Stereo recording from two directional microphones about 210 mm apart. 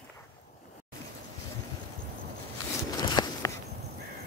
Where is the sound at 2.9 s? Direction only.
20° left (ahead or behind).